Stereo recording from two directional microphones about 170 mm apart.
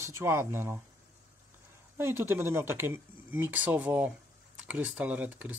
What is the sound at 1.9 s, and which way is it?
Speech, 15° right (ahead or behind).